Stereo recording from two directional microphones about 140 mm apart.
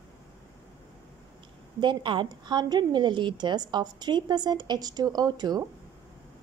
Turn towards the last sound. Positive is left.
turn(degrees=-30)  # may be behind; listen again after turning